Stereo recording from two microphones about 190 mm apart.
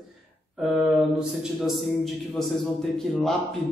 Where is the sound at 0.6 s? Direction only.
Centre (ahead or behind).